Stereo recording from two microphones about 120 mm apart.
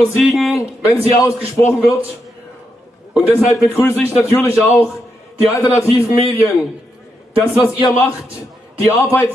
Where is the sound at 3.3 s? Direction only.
20° left (ahead or behind).